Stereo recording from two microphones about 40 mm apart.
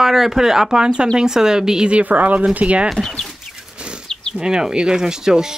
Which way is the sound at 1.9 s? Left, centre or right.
Right.